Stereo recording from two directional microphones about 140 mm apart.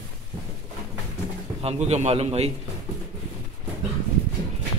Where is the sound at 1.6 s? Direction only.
50° right (ahead or behind).